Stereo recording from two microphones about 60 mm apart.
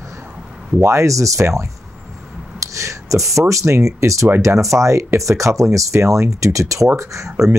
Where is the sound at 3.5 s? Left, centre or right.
Right.